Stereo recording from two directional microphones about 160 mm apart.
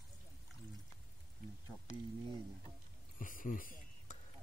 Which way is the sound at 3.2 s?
55° left (ahead or behind).